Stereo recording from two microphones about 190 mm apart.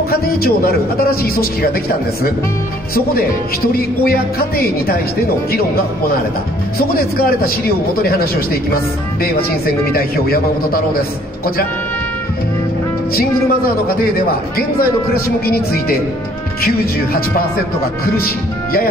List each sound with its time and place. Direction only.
0.1 s speech: 55° left (ahead or behind)
7.2 s speech: 50° left (ahead or behind)
9.2 s speech: 50° left (ahead or behind)
15.4 s speech: 55° left (ahead or behind)